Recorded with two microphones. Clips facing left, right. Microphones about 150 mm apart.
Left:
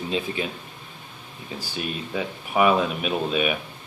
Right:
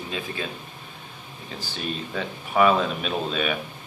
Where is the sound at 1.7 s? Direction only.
10° left (ahead or behind).